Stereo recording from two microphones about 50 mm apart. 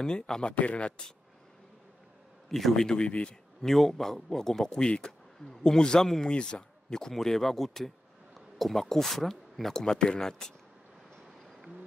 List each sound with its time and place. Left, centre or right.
0.0 s speech: centre
2.5 s a man's voice: centre
3.6 s a man's voice: centre